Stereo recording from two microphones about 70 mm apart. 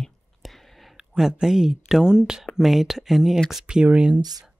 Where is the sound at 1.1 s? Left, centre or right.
Centre.